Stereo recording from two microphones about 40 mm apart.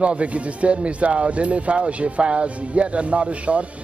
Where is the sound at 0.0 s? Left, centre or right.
Right.